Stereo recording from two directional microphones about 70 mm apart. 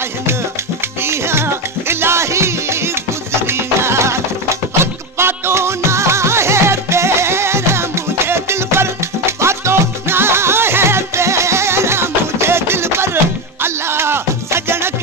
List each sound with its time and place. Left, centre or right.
1.0 s music: right